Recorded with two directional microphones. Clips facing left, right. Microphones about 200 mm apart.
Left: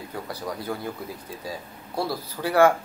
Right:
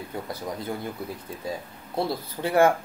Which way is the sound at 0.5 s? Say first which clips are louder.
Left 2 dB; 20° right (ahead or behind).